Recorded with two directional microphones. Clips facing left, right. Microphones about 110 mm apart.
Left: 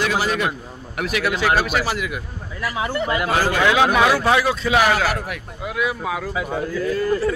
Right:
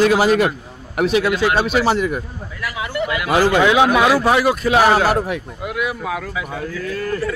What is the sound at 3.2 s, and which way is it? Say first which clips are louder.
Speech: right 6 dB; 20° right (ahead or behind).